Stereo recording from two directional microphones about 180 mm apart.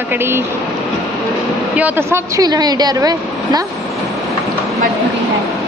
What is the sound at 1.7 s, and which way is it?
A woman's voice, 10° right (ahead or behind).